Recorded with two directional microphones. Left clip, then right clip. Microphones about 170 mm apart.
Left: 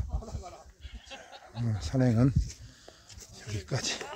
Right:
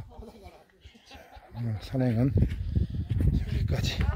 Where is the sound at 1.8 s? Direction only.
10° right (ahead or behind).